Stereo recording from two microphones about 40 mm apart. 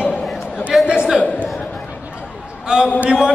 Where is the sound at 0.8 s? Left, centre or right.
Right.